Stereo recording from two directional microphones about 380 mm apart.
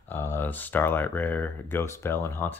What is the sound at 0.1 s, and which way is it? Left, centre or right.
Speech, centre.